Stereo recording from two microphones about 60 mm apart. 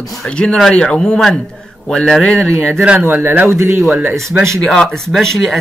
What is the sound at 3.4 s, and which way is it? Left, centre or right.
Speech, right.